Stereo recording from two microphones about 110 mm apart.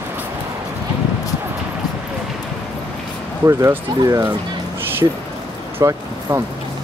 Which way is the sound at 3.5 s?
30° right (ahead or behind).